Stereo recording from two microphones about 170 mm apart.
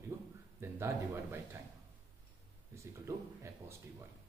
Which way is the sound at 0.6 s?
15° right (ahead or behind).